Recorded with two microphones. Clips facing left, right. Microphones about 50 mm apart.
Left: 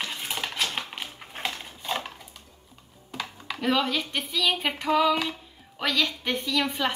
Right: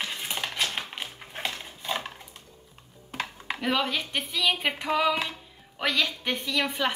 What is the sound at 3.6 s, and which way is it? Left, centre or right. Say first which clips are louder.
A woman's voice: left 2 dB; centre.